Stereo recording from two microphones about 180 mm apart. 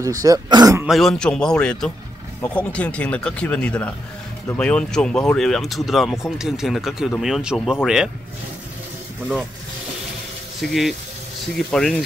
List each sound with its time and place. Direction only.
0.0 s speech: 20° right (ahead or behind)
0.8 s speech: centre (ahead or behind)
10.6 s speech: centre (ahead or behind)